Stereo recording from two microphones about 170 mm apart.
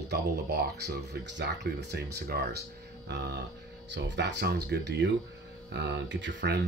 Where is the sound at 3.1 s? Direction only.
85° right.